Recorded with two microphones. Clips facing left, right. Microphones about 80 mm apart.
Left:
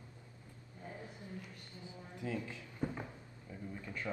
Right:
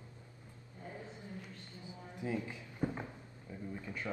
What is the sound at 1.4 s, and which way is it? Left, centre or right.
Speech, right.